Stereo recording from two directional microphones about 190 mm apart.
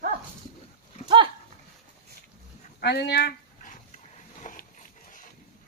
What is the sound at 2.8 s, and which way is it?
Speech, 60° left (ahead or behind).